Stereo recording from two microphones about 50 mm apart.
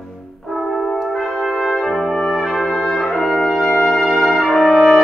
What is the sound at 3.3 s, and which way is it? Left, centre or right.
Brass instrument, centre.